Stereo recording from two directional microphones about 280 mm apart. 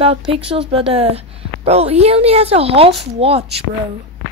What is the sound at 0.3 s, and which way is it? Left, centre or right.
A woman's voice, centre.